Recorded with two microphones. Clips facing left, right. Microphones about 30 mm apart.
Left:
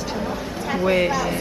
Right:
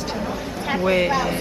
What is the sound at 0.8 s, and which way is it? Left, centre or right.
Speech, centre.